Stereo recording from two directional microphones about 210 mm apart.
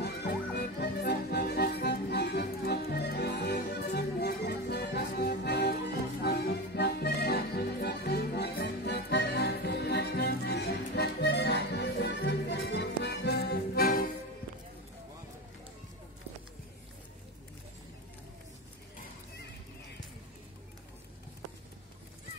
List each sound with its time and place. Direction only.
0.0 s accordion: 50° left (ahead or behind)